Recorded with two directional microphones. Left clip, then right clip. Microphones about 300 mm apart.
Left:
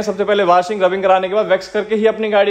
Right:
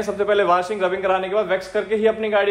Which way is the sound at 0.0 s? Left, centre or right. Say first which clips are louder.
Left 4 dB; left.